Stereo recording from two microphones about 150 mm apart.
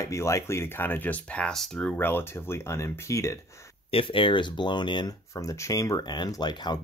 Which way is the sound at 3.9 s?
35° left (ahead or behind).